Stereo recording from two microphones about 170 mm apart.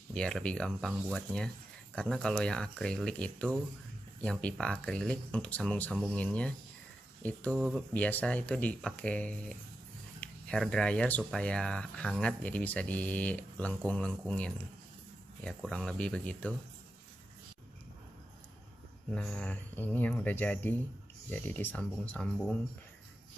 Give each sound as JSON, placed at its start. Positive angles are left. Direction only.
{"t": 0.1, "sound": "speech", "side_deg": 5}
{"t": 7.5, "sound": "speech", "side_deg": -5}
{"t": 7.9, "sound": "speech", "side_deg": 10}
{"t": 19.0, "sound": "speech", "side_deg": 5}